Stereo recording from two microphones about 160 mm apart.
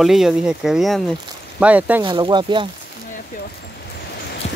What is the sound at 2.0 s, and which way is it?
Speech, 30° right (ahead or behind).